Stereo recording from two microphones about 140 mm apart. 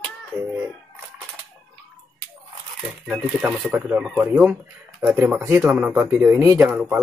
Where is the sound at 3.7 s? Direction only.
5° right (ahead or behind); by 6.6 s 25° right (ahead or behind).